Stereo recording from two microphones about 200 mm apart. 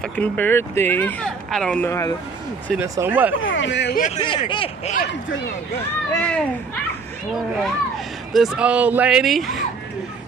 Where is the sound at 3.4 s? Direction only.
70° left (ahead or behind).